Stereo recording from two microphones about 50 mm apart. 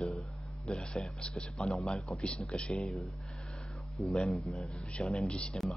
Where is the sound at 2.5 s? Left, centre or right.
Left.